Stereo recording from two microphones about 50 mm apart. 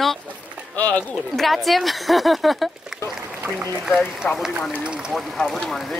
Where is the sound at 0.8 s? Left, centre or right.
Left.